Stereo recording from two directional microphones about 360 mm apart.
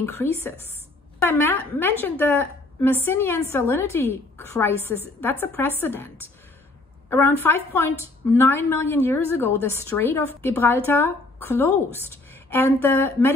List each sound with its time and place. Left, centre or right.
0.0 s a woman's voice: centre